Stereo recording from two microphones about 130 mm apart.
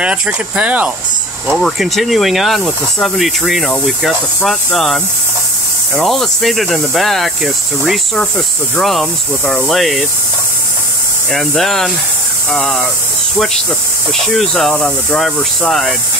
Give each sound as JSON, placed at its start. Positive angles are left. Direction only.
{"t": 0.0, "sound": "speech", "side_deg": -10}
{"t": 11.3, "sound": "speech", "side_deg": 0}
{"t": 14.1, "sound": "speech", "side_deg": 0}